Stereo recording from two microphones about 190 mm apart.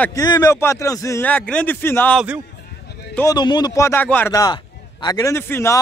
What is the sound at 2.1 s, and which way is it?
Speech, 5° right (ahead or behind).